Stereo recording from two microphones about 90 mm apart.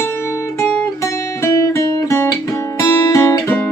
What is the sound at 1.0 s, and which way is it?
Guitar, 35° left (ahead or behind).